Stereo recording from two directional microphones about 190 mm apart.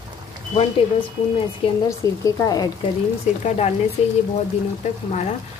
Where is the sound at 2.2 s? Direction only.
20° left (ahead or behind).